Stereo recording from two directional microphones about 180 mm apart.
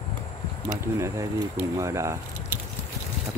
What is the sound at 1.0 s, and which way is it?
Speech, 15° right (ahead or behind).